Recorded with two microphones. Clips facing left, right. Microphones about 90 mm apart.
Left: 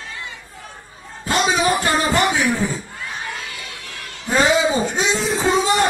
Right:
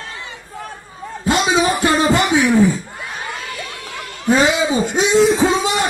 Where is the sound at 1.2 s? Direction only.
20° right (ahead or behind).